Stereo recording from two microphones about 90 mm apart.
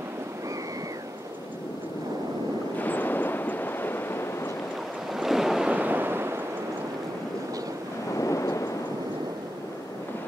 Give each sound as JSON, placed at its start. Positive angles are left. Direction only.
{"t": 2.8, "sound": "a sound", "side_deg": 20}
{"t": 5.1, "sound": "waves", "side_deg": -5}
{"t": 5.8, "sound": "fireworks", "side_deg": -20}
{"t": 8.2, "sound": "thunder", "side_deg": 35}